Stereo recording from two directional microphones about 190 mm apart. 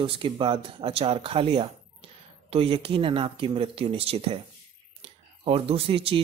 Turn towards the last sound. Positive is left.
turn(degrees=-30)  # may be behind; listen again after turning